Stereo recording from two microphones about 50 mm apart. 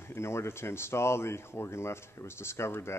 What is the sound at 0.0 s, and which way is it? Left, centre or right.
Speech, left.